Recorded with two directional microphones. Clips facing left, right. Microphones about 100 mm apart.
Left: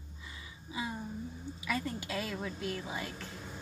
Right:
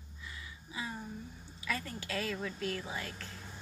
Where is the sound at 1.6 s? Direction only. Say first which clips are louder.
Left 3 dB; 15° left (ahead or behind).